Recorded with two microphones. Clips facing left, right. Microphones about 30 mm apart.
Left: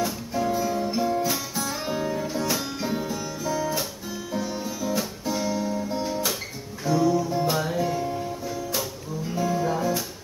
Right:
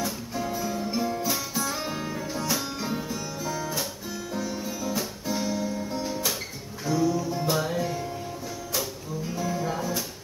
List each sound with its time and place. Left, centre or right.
0.3 s music: centre
4.3 s music: centre
5.9 s music: left; by 8.1 s centre
9.3 s music: centre